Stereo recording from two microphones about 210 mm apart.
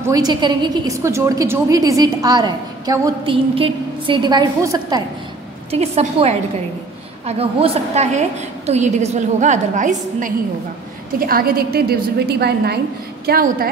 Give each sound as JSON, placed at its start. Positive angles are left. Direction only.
{"t": 0.0, "sound": "a woman's voice", "side_deg": -15}
{"t": 5.7, "sound": "a woman's voice", "side_deg": -30}